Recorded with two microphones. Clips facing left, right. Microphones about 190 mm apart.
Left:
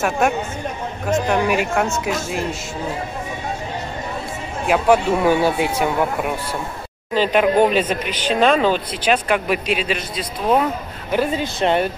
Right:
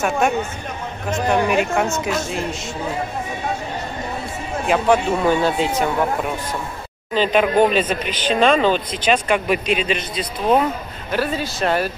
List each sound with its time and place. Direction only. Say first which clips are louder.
1.3 s a woman's voice: right 4 dB; 5° left (ahead or behind)
4.6 s speech: left 1 dB; 5° left (ahead or behind)
11.1 s speech: left 2 dB; 20° left (ahead or behind)